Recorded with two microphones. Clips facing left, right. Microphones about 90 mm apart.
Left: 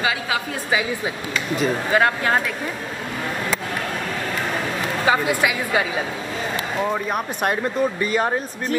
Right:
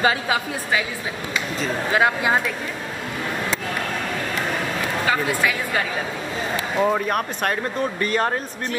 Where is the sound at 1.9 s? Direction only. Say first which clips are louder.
Right 1 dB; 5° right (ahead or behind).